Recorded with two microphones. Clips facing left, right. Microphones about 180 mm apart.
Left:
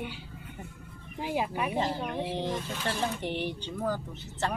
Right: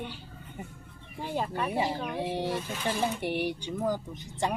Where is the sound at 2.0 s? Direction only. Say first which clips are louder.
Right 1 dB; 10° right (ahead or behind).